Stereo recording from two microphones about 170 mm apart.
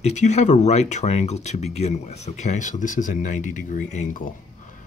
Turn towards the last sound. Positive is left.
turn(degrees=50)  # may be behind; listen again after turning